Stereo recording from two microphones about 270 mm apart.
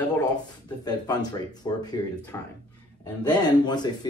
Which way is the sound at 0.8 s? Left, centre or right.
Centre.